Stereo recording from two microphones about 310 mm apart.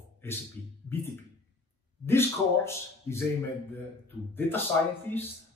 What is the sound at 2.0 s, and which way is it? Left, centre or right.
A man's voice, centre.